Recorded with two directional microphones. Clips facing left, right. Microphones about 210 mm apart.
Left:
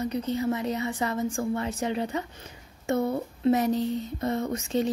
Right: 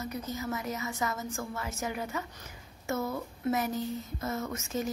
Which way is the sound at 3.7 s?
85° left.